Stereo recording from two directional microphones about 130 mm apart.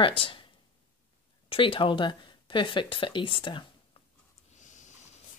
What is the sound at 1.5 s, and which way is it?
Speech, 40° left (ahead or behind).